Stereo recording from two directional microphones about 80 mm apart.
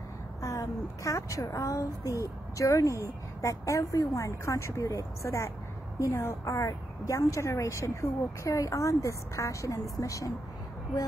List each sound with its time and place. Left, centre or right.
0.4 s a woman's voice: left